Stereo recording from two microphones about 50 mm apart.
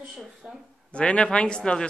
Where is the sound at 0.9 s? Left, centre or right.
Left.